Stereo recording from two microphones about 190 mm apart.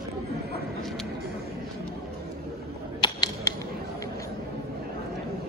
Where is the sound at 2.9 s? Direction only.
25° left (ahead or behind).